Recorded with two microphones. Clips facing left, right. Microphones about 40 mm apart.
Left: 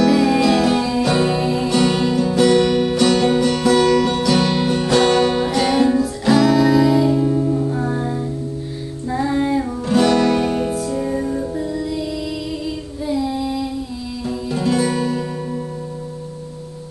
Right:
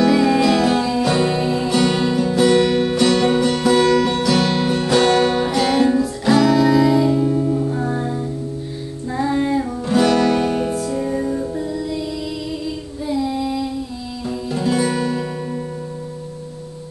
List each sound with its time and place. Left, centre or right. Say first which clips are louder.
0.0 s music: even; centre
13.0 s child singing: even; centre
14.5 s music: left 1 dB; centre
14.8 s music: even; centre